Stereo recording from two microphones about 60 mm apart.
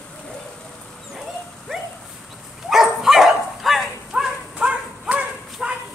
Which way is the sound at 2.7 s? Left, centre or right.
Centre.